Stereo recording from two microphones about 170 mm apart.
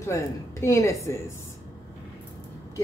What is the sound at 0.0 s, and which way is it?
Speech, 15° left (ahead or behind).